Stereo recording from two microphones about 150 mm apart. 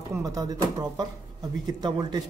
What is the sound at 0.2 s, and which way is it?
Speech, 25° right (ahead or behind).